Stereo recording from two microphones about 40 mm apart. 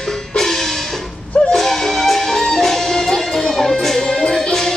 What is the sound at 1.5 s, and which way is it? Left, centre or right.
Music, centre.